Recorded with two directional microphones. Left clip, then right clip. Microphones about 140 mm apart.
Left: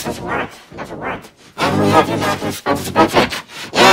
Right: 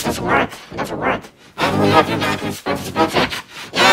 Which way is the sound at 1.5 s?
15° left (ahead or behind).